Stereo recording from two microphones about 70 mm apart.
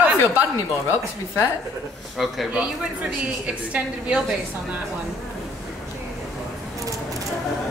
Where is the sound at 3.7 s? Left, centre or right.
Centre.